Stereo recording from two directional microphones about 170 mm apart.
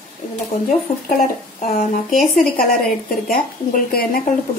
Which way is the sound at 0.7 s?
50° left (ahead or behind).